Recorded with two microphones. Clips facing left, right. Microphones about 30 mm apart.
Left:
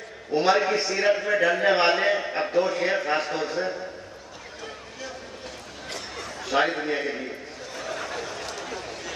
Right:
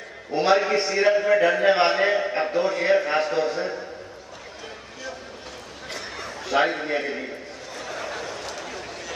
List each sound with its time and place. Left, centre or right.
0.3 s a man's voice: centre
1.2 s a man's voice: centre
1.5 s a man's voice: centre
6.5 s a man's voice: centre
7.7 s a sound: centre